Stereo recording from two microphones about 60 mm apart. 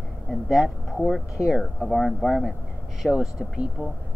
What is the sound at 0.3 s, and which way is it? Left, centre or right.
Speech, centre.